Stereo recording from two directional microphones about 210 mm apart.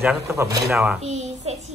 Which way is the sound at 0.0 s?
10° right (ahead or behind).